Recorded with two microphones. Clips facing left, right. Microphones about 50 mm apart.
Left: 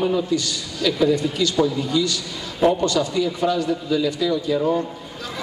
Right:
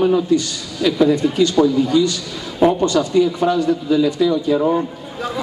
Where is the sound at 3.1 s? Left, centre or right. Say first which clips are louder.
Right 5 dB; right.